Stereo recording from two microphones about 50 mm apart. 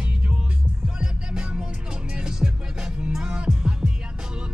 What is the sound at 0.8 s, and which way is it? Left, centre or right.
Music, centre.